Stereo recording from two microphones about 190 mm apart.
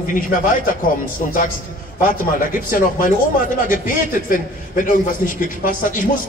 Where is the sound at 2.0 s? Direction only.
45° left (ahead or behind).